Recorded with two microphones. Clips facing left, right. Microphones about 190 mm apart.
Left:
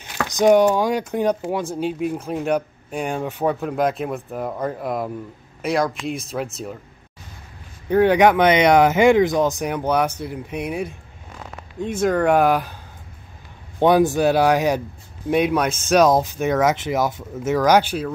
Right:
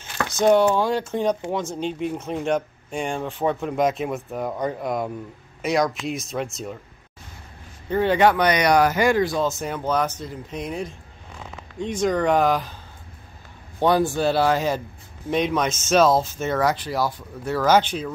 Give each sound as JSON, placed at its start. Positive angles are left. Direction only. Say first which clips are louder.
{"t": 0.0, "sound": "speech", "louder": "left 3 dB", "side_deg": 15}
{"t": 7.9, "sound": "speech", "louder": "left 4 dB", "side_deg": 10}
{"t": 13.7, "sound": "speech", "louder": "left 4 dB", "side_deg": 20}